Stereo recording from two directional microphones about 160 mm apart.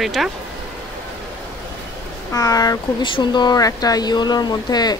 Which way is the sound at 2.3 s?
20° left (ahead or behind).